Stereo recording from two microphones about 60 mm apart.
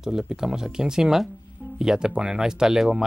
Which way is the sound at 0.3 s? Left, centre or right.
Centre.